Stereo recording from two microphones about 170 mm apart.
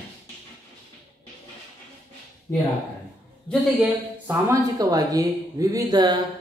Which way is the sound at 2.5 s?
15° left (ahead or behind).